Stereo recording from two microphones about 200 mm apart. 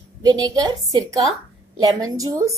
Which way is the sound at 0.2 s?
20° right (ahead or behind).